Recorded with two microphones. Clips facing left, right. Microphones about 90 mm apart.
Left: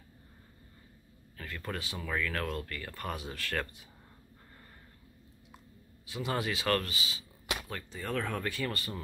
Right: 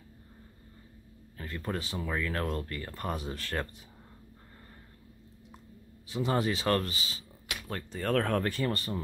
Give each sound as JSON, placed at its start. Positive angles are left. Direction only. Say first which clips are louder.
{"t": 1.4, "sound": "speech", "louder": "right 4 dB", "side_deg": -30}
{"t": 6.0, "sound": "speech", "louder": "right 4 dB", "side_deg": -30}
{"t": 8.0, "sound": "speech", "louder": "right 7 dB", "side_deg": -60}
{"t": 8.5, "sound": "speech", "louder": "right 4 dB", "side_deg": -35}